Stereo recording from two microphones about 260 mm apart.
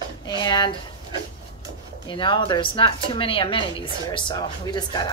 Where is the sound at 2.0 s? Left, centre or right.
Centre.